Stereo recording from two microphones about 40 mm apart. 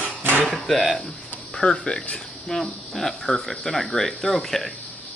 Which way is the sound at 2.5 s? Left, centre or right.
Centre.